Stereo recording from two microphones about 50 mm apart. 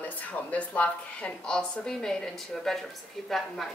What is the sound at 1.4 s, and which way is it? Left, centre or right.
Speech, centre.